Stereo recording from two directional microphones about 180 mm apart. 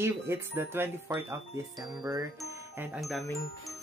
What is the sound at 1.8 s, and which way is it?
Music, 20° right (ahead or behind).